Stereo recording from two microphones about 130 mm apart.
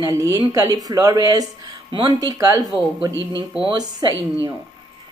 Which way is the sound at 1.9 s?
45° right (ahead or behind).